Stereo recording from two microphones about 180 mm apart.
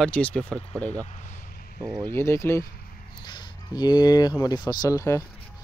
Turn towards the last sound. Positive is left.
turn(degrees=15)  # may be behind; listen again after turning